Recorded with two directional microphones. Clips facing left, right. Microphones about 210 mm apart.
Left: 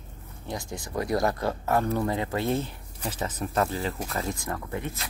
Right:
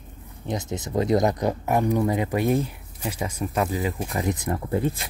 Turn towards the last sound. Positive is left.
turn(degrees=-30)  # may be behind; listen again after turning